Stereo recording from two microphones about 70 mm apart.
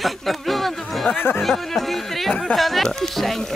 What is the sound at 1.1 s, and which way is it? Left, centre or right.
Speech, left.